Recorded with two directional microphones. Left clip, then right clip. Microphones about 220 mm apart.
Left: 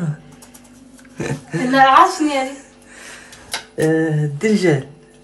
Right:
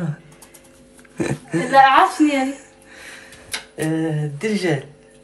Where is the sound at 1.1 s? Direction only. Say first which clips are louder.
Right 2 dB; centre (ahead or behind).